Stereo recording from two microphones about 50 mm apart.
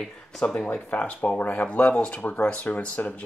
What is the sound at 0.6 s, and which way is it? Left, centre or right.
Speech, left.